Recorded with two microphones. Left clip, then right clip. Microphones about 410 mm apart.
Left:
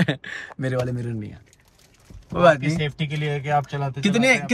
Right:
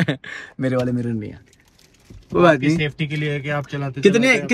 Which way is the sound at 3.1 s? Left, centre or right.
Left.